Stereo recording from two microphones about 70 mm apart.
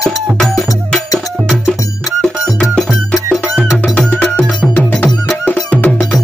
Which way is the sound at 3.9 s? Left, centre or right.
Centre.